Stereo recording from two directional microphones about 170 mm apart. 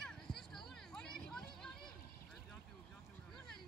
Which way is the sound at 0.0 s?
5° left (ahead or behind).